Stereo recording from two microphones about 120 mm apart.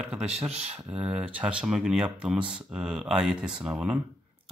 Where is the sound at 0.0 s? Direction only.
10° right (ahead or behind).